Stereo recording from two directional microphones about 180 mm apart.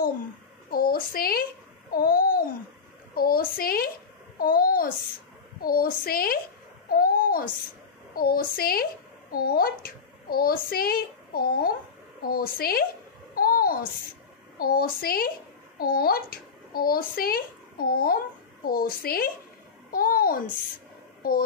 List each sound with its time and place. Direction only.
0.7 s a sound: 55° left (ahead or behind)
1.9 s babbling: 55° left (ahead or behind)
3.2 s a child's voice: 55° left (ahead or behind)
13.3 s babbling: 55° left (ahead or behind)
14.6 s a child's voice: 55° left (ahead or behind)